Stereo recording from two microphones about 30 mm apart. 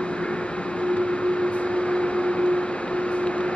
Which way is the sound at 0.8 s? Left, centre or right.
Left.